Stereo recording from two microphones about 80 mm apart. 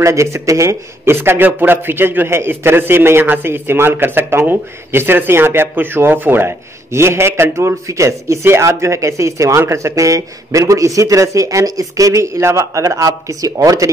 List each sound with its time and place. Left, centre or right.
0.0 s a man's voice: right